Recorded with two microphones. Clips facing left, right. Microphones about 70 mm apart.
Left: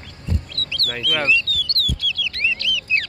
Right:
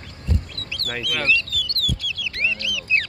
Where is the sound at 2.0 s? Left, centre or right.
Centre.